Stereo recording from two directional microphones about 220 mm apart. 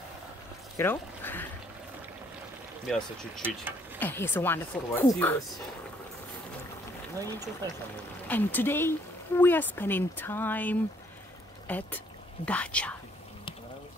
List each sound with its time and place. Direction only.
0.7 s speech: 10° left (ahead or behind)
2.9 s speech: 5° right (ahead or behind)
4.0 s speech: 10° left (ahead or behind)
7.2 s speech: 15° right (ahead or behind)
8.3 s speech: 10° left (ahead or behind)